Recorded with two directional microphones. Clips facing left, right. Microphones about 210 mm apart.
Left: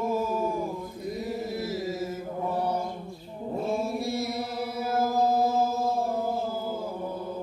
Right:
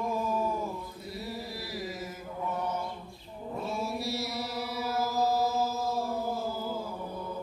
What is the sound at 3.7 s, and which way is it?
Chant, 50° left (ahead or behind).